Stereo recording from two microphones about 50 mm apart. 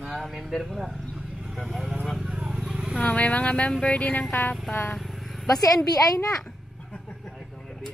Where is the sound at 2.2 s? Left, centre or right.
Centre.